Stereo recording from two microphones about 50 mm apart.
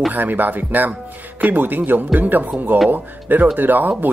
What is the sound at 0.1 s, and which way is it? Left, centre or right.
Speech, right.